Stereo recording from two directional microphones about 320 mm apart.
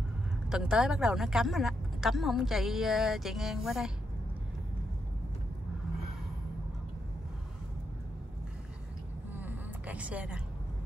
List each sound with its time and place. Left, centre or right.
0.5 s speech: centre
9.3 s vehicle: centre